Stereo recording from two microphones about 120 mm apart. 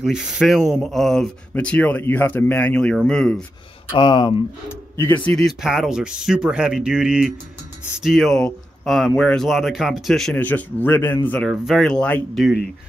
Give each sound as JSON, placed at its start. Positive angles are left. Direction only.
{"t": 0.0, "sound": "a man's voice", "side_deg": -5}
{"t": 3.9, "sound": "speech", "side_deg": 40}
{"t": 4.6, "sound": "speech", "side_deg": 20}
{"t": 5.3, "sound": "speech", "side_deg": 0}
{"t": 10.3, "sound": "a man's voice", "side_deg": 15}